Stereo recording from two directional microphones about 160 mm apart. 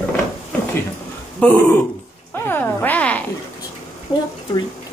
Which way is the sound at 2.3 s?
15° left (ahead or behind).